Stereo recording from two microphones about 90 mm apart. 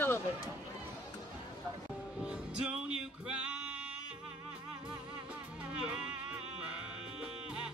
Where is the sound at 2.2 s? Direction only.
10° right (ahead or behind).